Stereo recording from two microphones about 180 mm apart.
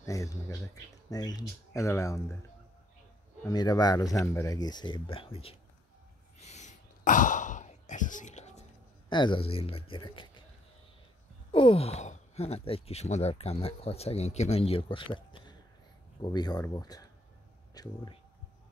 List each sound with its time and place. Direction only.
0.0 s speech: 15° left (ahead or behind)
3.4 s speech: 20° left (ahead or behind)
6.4 s a sound: 40° left (ahead or behind)
9.1 s speech: 25° left (ahead or behind)
11.5 s speech: 30° left (ahead or behind)